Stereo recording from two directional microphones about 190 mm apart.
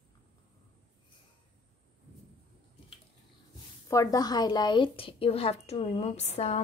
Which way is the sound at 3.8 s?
20° left (ahead or behind).